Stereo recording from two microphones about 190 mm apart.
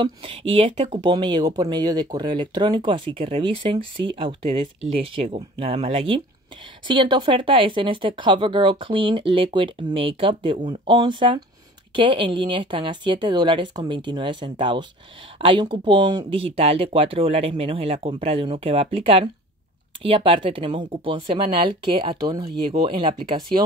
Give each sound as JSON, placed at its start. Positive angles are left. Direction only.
{"t": 0.0, "sound": "speech", "side_deg": -25}